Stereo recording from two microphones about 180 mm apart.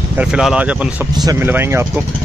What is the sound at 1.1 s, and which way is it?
Speech, 20° right (ahead or behind).